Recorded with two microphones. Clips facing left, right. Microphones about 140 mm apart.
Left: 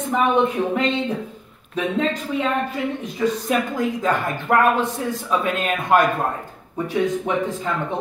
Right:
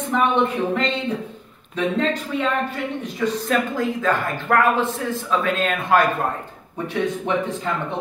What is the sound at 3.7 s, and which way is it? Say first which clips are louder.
Speech: even; 20° left (ahead or behind).